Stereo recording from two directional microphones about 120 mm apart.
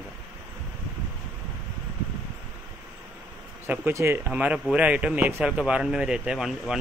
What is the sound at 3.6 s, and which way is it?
Speech, 20° right (ahead or behind).